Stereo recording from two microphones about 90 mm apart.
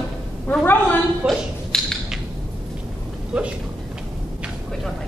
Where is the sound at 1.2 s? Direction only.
5° left (ahead or behind).